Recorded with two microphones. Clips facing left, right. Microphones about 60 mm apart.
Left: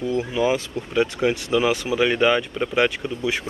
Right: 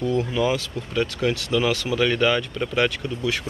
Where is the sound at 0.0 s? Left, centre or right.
Centre.